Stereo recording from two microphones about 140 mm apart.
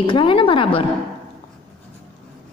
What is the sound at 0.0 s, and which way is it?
Speech, 35° left (ahead or behind).